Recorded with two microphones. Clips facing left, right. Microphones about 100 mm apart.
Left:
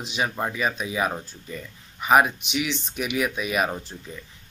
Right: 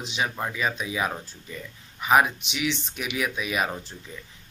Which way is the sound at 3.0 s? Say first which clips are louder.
Left 5 dB; 10° left (ahead or behind).